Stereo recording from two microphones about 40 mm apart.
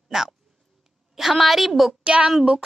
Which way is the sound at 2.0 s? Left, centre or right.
Right.